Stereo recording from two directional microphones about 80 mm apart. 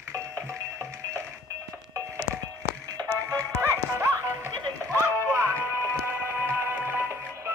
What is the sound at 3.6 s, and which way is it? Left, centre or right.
Music, right.